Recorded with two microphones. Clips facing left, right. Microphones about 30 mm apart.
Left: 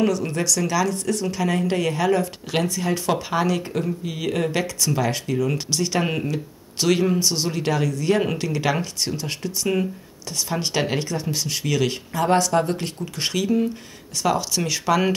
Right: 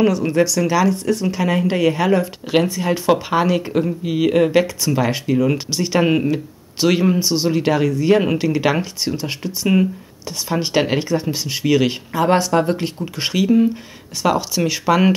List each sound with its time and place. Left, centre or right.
0.0 s speech: centre